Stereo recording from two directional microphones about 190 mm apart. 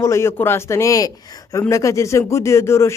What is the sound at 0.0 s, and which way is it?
Speech, 15° left (ahead or behind).